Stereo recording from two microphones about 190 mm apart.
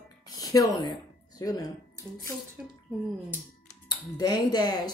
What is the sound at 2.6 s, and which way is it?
Speech, 10° right (ahead or behind).